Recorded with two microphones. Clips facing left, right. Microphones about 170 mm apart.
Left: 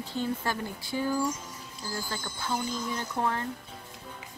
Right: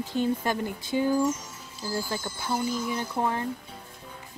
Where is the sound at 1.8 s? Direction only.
10° right (ahead or behind).